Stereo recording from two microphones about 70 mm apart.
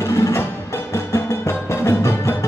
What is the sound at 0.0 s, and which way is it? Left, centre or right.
Music, left.